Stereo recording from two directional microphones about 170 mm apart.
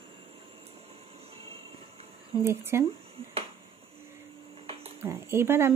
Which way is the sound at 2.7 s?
15° right (ahead or behind).